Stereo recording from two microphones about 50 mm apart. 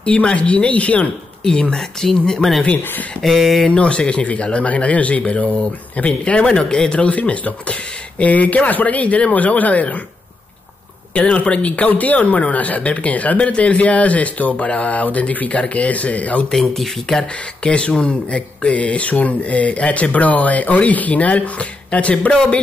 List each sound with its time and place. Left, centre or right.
0.0 s speech: left
1.4 s speech: centre
2.8 s speech: left
3.2 s speech: centre
3.6 s speech: left
11.1 s speech: left
16.5 s speech: centre
17.6 s speech: centre
22.3 s speech: centre